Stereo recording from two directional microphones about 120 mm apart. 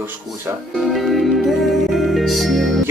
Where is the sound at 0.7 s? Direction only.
Centre (ahead or behind).